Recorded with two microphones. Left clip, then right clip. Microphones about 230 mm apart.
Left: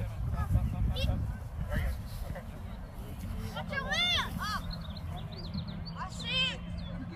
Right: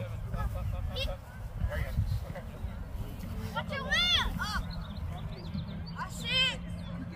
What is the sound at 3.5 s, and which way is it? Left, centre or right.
Vehicle, right.